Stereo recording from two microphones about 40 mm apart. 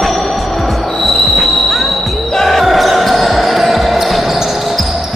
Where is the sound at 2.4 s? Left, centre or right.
Centre.